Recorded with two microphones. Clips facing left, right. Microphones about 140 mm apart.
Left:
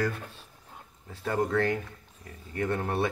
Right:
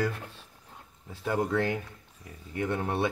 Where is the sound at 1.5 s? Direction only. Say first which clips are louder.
Left 1 dB; 20° right (ahead or behind).